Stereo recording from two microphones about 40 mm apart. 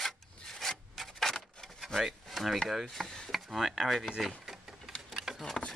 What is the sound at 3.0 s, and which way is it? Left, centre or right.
Speech, left.